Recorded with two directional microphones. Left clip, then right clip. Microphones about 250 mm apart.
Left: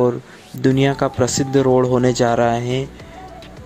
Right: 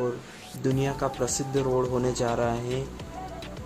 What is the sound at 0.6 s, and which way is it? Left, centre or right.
Speech, left.